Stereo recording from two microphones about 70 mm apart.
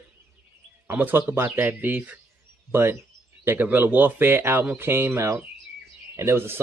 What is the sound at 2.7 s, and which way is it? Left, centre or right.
Speech, right.